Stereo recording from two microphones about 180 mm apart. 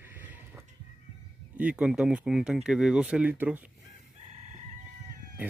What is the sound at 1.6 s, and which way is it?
Speech, 5° right (ahead or behind).